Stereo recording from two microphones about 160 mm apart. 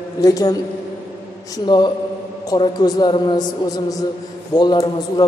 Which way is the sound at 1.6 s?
25° left (ahead or behind).